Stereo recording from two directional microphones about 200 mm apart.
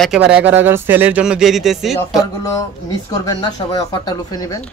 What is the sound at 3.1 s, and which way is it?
Speech, 20° left (ahead or behind).